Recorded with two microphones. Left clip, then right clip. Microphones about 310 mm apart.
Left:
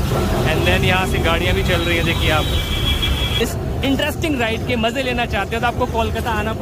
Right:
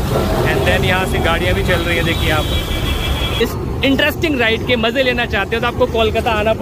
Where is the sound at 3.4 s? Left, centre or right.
Centre.